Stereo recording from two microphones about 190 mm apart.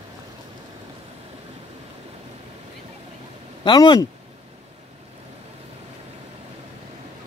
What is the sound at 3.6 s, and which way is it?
Speech, 20° left (ahead or behind).